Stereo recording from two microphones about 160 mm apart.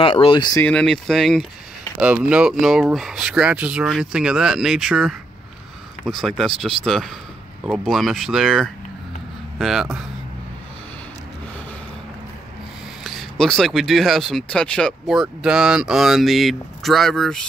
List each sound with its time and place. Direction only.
0.0 s speech: 35° left (ahead or behind)
0.7 s speech: 5° left (ahead or behind)
13.0 s speech: centre (ahead or behind)